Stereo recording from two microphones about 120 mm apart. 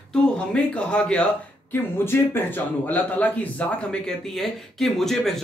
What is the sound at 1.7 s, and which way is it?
Speech, 20° left (ahead or behind).